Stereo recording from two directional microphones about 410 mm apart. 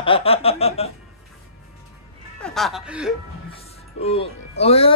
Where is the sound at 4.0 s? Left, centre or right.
Centre.